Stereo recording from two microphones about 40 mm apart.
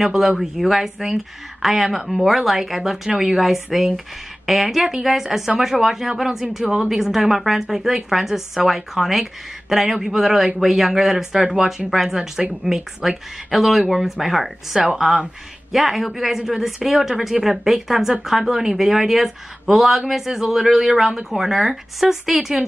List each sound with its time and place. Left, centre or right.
0.0 s speech: centre
11.9 s speech: centre
14.8 s speech: centre